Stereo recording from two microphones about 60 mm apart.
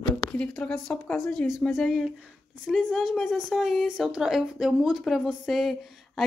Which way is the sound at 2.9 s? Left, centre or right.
Centre.